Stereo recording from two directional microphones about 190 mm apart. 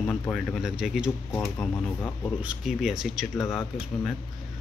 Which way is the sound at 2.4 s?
5° right (ahead or behind).